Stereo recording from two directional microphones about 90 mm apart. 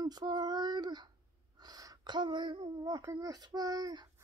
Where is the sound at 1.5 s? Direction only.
45° right (ahead or behind).